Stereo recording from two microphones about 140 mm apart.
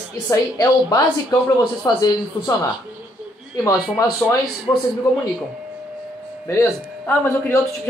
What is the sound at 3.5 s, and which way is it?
Speech, 25° left (ahead or behind).